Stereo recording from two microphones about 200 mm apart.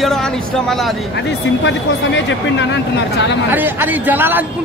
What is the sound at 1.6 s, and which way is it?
Speech, 65° left (ahead or behind).